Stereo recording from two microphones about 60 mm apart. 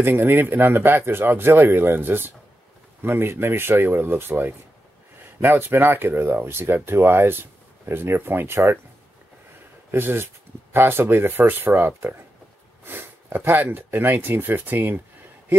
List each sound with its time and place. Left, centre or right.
0.0 s speech: right
9.8 s speech: right